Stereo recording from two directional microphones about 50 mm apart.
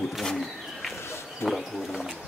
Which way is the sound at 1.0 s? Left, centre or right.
Left.